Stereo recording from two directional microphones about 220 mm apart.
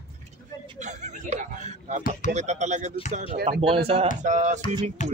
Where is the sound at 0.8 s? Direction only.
35° right (ahead or behind).